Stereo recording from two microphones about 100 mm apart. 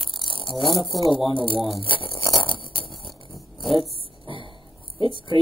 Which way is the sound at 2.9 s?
Centre (ahead or behind).